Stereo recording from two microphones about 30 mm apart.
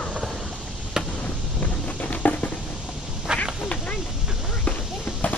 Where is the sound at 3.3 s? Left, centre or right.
Right.